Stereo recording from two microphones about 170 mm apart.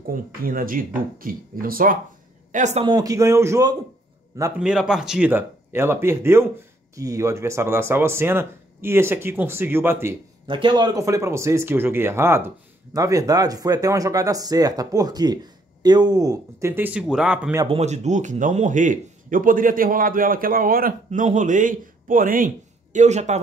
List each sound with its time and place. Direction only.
0.1 s speech: 55° right (ahead or behind)
2.5 s speech: 45° right (ahead or behind)
2.8 s speech: 20° right (ahead or behind)
4.6 s speech: 5° right (ahead or behind)
10.4 s speech: 30° right (ahead or behind); by 17.6 s 5° right (ahead or behind)
17.6 s speech: 40° right (ahead or behind)
22.9 s speech: 45° right (ahead or behind)